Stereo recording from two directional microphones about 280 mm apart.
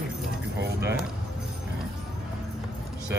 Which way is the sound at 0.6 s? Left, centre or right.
Right.